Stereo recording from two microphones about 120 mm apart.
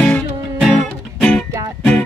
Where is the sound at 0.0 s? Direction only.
5° left (ahead or behind).